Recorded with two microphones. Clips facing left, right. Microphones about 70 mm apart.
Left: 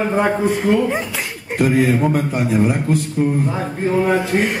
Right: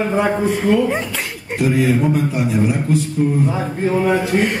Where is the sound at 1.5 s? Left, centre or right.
Left.